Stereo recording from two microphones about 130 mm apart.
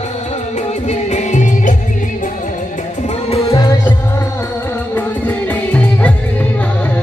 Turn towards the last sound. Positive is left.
turn(degrees=10)  # may be behind; listen again after turning